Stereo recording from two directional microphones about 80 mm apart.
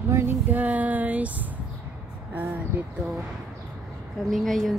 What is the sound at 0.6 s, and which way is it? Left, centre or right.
Female singing, centre.